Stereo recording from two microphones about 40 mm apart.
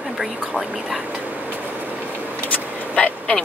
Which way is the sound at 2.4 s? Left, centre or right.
Left.